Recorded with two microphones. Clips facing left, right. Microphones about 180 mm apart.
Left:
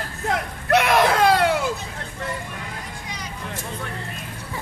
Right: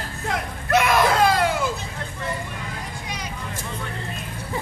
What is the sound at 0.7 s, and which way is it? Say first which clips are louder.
Baby cry: left 1 dB; 70° left (ahead or behind).